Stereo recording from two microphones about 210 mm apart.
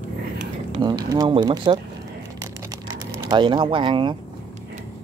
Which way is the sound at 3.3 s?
20° right (ahead or behind).